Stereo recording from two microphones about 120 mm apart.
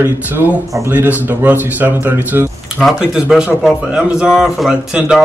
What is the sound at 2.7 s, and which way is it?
Speech, centre (ahead or behind).